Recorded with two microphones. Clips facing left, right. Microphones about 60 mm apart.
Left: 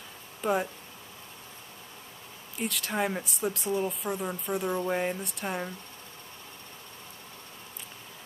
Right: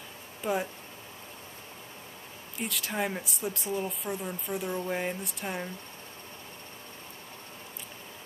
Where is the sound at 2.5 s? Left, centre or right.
Centre.